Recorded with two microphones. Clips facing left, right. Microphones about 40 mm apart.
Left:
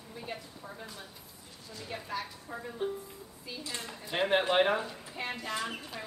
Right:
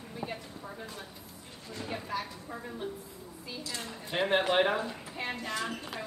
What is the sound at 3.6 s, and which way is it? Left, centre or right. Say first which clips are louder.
Speech: even; left.